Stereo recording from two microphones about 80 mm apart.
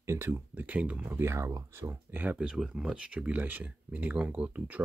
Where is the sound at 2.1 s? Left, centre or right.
Centre.